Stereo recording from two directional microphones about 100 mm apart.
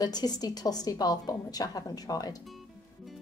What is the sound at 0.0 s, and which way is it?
A woman's voice, 40° left (ahead or behind).